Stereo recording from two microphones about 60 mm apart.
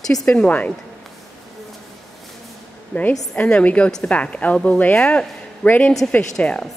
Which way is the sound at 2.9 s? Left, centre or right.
Centre.